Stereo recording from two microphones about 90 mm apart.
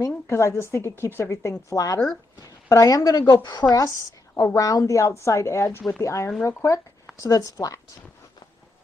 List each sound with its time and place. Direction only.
0.0 s a woman's voice: 35° left (ahead or behind)
3.6 s a woman's voice: 30° left (ahead or behind)
4.6 s a woman's voice: 40° left (ahead or behind)